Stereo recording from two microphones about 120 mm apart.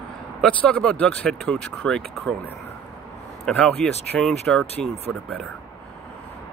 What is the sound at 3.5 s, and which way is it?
Speech, 5° left (ahead or behind).